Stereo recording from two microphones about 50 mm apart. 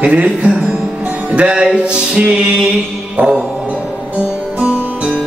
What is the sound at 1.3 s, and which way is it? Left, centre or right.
Speech, right.